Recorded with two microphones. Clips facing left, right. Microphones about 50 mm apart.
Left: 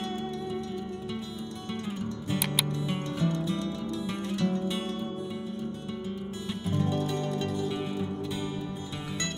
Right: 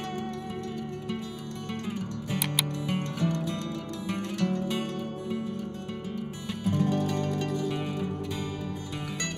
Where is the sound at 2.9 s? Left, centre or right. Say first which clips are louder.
Right 2 dB; right.